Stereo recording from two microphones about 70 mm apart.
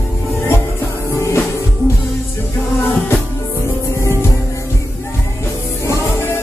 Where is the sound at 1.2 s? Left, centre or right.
Left.